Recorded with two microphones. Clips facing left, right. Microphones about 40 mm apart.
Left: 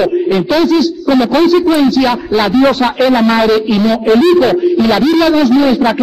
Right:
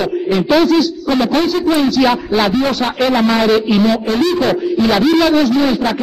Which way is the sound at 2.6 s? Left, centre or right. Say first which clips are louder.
Left 6 dB; left.